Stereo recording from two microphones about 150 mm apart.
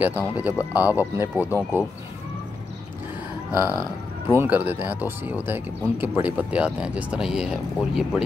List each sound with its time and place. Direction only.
0.0 s speech: 10° right (ahead or behind)
1.5 s speech: 15° left (ahead or behind)
4.3 s speech: 15° right (ahead or behind)